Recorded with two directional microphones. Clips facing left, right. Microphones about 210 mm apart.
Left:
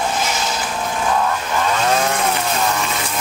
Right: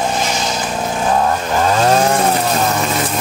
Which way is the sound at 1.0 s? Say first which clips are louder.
Right 4 dB; 40° right (ahead or behind).